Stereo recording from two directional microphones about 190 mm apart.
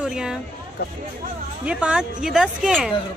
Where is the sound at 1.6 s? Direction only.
5° right (ahead or behind).